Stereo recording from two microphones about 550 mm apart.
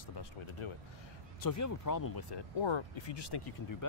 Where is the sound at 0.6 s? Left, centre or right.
Left.